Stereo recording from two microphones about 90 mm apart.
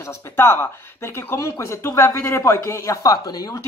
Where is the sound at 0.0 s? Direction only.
30° left (ahead or behind).